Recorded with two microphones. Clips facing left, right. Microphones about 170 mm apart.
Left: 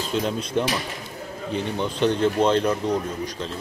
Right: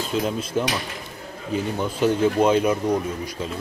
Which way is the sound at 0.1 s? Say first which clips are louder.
Even; 5° right (ahead or behind).